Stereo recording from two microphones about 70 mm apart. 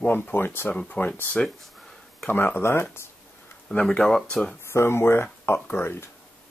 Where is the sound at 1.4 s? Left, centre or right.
Centre.